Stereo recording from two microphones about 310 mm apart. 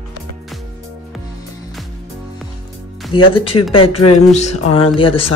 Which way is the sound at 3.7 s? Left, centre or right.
Centre.